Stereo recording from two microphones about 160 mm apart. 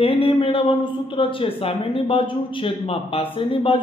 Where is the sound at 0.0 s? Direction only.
35° left (ahead or behind).